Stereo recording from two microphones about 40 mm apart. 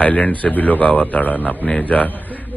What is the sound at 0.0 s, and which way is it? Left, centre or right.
A man's voice, left.